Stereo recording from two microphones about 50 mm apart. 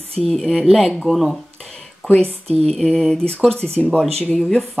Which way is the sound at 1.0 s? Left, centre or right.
Centre.